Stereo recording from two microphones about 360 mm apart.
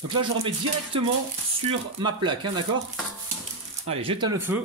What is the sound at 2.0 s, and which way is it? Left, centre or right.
Speech, centre.